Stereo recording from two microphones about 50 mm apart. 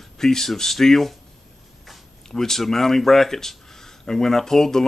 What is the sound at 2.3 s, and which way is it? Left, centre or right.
Speech, centre.